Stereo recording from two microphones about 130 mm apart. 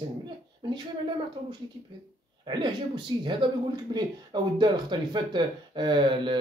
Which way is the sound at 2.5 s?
35° right (ahead or behind).